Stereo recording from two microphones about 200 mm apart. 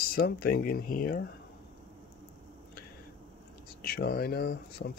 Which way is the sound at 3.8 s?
50° left (ahead or behind).